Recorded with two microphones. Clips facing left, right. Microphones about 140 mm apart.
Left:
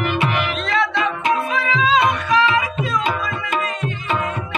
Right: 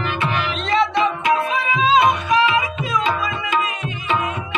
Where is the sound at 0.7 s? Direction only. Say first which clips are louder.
Right 4 dB; 25° right (ahead or behind).